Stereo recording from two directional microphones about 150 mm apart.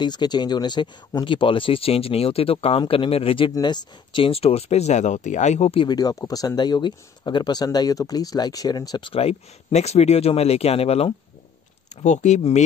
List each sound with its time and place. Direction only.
0.0 s speech: 30° left (ahead or behind)
12.0 s speech: 55° left (ahead or behind)